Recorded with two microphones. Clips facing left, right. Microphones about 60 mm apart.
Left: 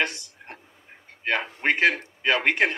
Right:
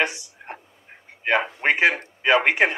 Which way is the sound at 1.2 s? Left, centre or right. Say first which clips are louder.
Right 4 dB; centre.